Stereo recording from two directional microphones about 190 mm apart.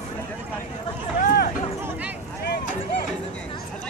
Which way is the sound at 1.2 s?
55° left (ahead or behind).